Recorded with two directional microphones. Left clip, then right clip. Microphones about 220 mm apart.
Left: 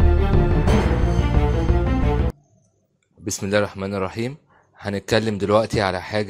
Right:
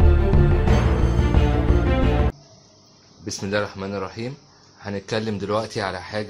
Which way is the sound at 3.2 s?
35° left (ahead or behind).